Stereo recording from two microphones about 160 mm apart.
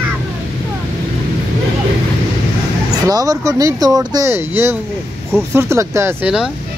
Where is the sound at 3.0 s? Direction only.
20° right (ahead or behind).